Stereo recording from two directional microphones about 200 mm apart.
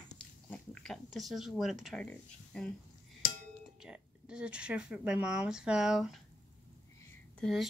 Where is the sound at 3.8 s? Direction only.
5° right (ahead or behind).